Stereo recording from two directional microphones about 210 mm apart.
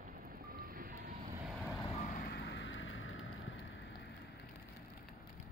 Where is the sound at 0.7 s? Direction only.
45° right (ahead or behind).